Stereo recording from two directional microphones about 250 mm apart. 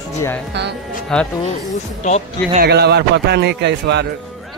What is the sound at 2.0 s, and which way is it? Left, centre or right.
Speech, left.